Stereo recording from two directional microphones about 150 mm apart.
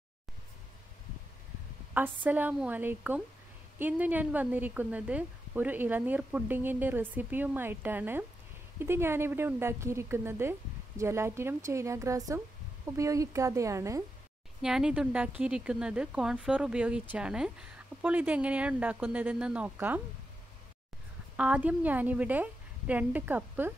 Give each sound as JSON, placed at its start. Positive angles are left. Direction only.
{"t": 2.2, "sound": "a woman's voice", "side_deg": -10}
{"t": 14.6, "sound": "a woman's voice", "side_deg": -5}
{"t": 21.4, "sound": "a woman's voice", "side_deg": -10}